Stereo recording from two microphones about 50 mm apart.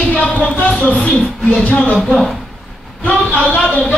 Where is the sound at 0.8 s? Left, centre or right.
Left.